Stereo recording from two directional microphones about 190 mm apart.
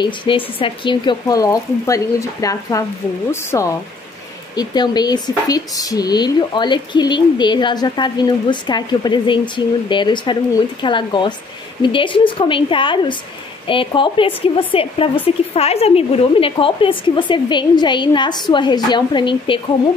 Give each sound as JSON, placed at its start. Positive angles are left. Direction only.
{"t": 0.0, "sound": "speech", "side_deg": 25}